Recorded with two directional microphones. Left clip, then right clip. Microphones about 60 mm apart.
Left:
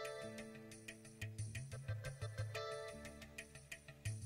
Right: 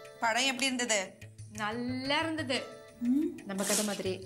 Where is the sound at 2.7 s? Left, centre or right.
Left.